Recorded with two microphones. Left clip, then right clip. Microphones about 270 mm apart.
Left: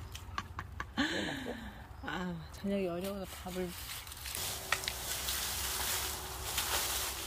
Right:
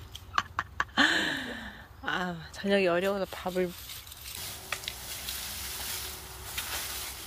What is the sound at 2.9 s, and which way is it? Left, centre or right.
Speech, right.